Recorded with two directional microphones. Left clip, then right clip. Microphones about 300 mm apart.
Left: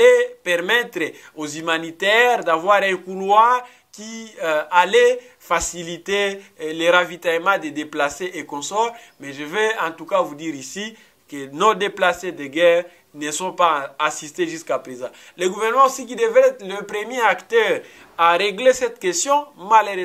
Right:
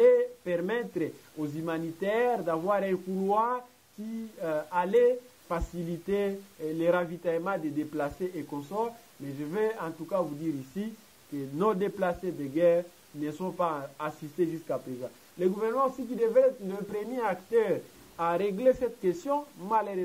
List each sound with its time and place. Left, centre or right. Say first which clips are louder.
0.0 s speech: left 9 dB; centre
8.5 s speech: left 10 dB; left
9.4 s speech: left 10 dB; centre